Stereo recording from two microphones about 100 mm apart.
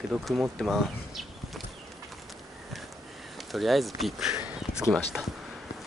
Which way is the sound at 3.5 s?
Centre (ahead or behind).